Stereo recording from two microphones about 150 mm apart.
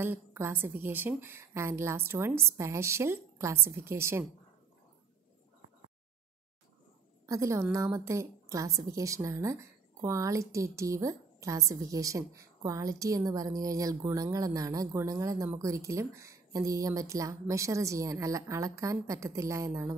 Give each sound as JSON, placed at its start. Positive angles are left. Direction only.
{"t": 0.0, "sound": "a woman's voice", "side_deg": -15}
{"t": 7.2, "sound": "a woman's voice", "side_deg": -20}